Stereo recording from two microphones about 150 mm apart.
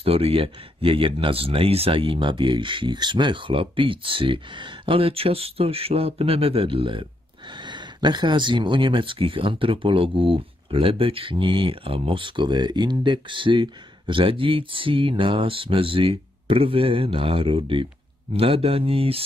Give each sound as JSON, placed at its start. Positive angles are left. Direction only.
{"t": 0.0, "sound": "speech", "side_deg": -40}